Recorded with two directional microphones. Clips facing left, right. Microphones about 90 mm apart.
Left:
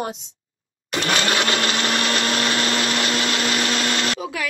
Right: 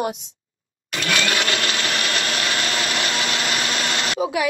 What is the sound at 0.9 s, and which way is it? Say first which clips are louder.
Blender: left 1 dB; 30° left (ahead or behind).